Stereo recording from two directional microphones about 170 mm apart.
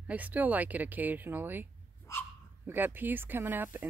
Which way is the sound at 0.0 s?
10° right (ahead or behind).